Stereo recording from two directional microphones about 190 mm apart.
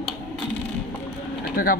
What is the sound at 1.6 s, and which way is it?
Speech, 50° left (ahead or behind).